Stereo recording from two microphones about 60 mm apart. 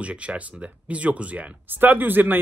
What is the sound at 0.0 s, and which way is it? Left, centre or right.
Speech, right.